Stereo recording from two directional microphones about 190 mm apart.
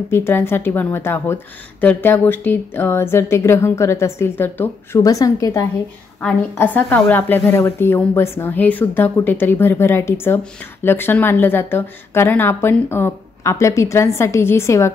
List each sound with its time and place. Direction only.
0.1 s a woman's voice: 15° left (ahead or behind)